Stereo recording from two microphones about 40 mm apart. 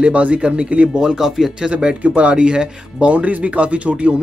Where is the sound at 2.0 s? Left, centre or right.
Right.